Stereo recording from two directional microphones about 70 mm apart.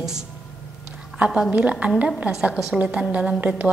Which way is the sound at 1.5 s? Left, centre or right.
Centre.